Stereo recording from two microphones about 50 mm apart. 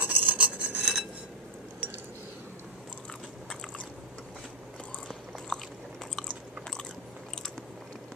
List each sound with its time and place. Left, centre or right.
0.0 s a sound: right
0.4 s filing: right
5.5 s biting: centre